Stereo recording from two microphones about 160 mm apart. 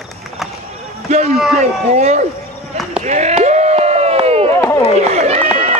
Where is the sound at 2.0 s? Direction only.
45° right (ahead or behind).